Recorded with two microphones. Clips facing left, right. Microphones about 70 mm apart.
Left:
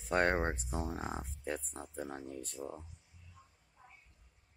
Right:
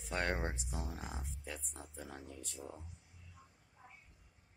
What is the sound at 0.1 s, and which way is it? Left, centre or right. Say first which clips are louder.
Speech: left 7 dB; left.